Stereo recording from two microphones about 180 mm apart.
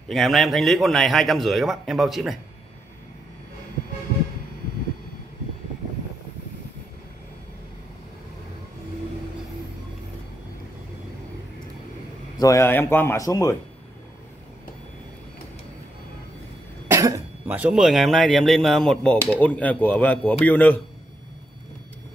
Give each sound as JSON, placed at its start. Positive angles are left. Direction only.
{"t": 0.1, "sound": "speech", "side_deg": 0}
{"t": 12.4, "sound": "speech", "side_deg": 15}
{"t": 16.8, "sound": "speech", "side_deg": -15}